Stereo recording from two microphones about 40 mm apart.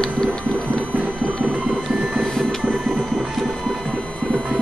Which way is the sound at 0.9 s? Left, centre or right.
Right.